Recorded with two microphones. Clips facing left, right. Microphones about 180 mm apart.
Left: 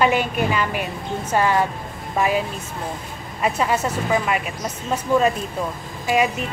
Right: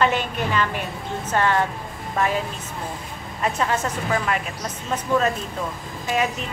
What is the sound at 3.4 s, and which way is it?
A woman's voice, 10° left (ahead or behind).